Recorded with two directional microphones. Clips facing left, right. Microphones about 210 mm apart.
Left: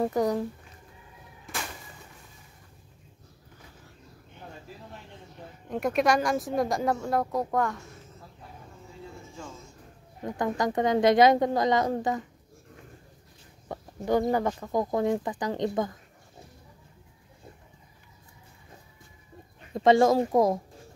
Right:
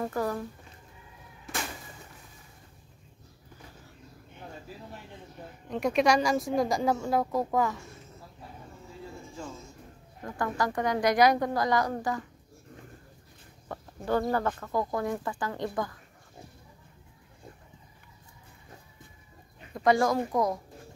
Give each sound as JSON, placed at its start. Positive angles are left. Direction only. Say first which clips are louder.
{"t": 0.0, "sound": "speech", "louder": "left 5 dB", "side_deg": 20}
{"t": 5.7, "sound": "speech", "louder": "even", "side_deg": 0}
{"t": 10.2, "sound": "speech", "louder": "left 3 dB", "side_deg": 20}
{"t": 13.7, "sound": "speech", "louder": "left 3 dB", "side_deg": 15}
{"t": 19.7, "sound": "speech", "louder": "left 4 dB", "side_deg": 25}